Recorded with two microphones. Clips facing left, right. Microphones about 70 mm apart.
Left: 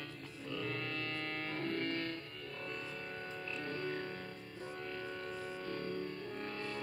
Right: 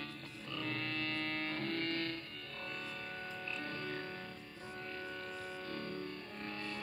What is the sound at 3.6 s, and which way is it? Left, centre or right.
Music, left.